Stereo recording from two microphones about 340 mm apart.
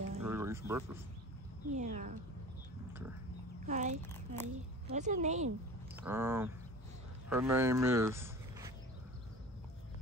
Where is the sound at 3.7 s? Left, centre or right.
Right.